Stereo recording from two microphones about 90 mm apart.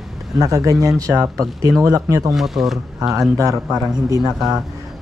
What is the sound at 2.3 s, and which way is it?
Speech, 5° right (ahead or behind).